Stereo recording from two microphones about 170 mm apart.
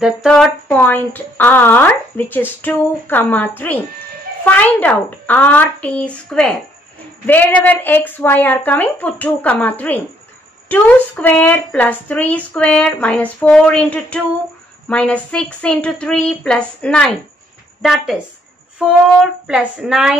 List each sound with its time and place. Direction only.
0.0 s speech: centre (ahead or behind)
19.4 s speech: 5° right (ahead or behind)